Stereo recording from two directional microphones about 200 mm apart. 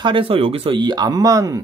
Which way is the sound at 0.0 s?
25° right (ahead or behind).